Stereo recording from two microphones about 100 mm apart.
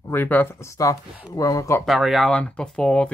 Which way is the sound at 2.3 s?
10° left (ahead or behind).